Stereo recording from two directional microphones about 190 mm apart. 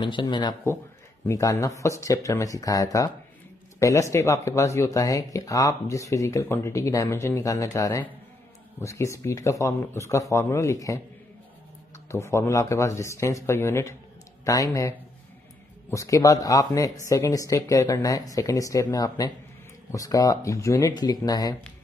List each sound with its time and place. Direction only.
0.0 s speech: 25° left (ahead or behind)
12.1 s speech: 15° left (ahead or behind)